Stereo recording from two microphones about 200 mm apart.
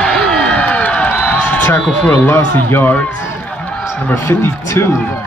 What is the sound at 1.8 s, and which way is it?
A man's voice, 10° left (ahead or behind).